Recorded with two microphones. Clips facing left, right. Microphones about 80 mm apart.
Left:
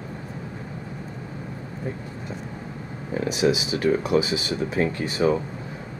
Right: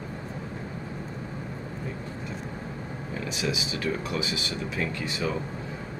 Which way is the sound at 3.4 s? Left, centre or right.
Left.